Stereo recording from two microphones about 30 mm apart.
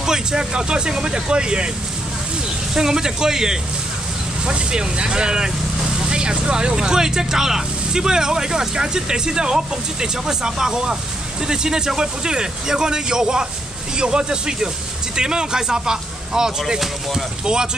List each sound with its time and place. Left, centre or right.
0.0 s speech: right
2.7 s speech: centre
4.5 s speech: right